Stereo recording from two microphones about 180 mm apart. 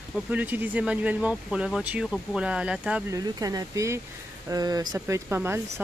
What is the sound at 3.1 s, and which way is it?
Speech, 20° right (ahead or behind).